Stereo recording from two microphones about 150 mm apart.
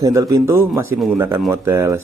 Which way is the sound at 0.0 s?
25° right (ahead or behind).